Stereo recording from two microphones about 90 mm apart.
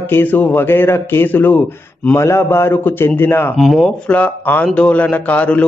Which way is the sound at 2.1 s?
30° left (ahead or behind).